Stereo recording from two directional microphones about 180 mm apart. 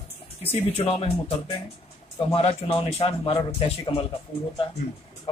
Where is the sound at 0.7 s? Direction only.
35° left (ahead or behind).